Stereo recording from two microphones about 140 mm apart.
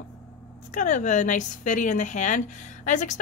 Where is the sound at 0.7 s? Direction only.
60° left (ahead or behind).